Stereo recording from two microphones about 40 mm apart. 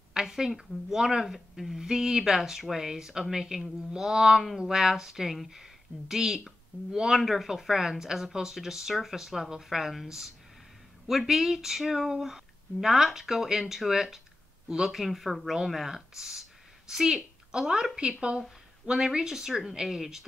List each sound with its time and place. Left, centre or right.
0.1 s speech: centre
18.9 s speech: centre